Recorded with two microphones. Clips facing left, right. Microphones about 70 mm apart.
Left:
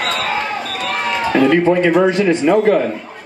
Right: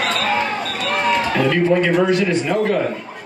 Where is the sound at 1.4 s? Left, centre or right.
Centre.